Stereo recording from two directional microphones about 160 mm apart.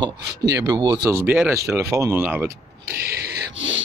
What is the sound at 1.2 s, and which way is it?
Speech, 10° right (ahead or behind).